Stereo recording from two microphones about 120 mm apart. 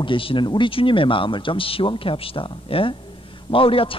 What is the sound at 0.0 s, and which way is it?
A man's voice, 45° left (ahead or behind).